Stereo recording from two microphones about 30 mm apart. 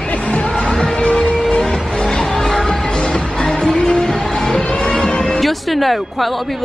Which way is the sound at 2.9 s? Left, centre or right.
Left.